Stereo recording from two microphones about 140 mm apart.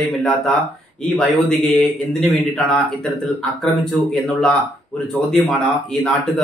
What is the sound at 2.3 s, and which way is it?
Speech, centre (ahead or behind).